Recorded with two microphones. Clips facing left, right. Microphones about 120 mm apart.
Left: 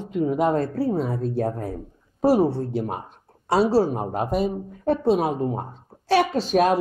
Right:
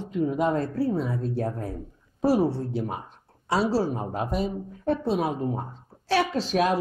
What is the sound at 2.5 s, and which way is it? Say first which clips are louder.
Speech: left 3 dB; 55° left (ahead or behind).